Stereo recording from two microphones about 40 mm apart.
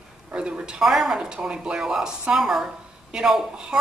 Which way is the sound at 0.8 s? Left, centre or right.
Centre.